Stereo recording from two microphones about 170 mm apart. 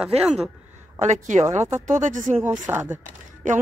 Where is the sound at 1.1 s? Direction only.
45° right (ahead or behind).